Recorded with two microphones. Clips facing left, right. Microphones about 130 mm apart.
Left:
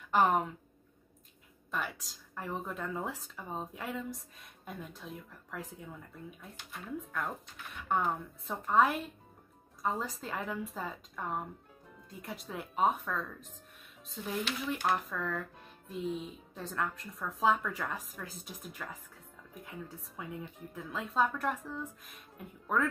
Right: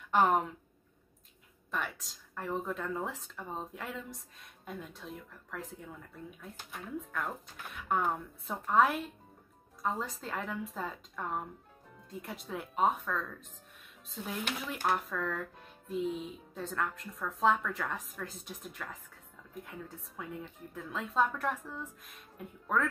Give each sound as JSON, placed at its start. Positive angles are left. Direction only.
{"t": 0.1, "sound": "speech", "side_deg": 0}
{"t": 1.7, "sound": "speech", "side_deg": 0}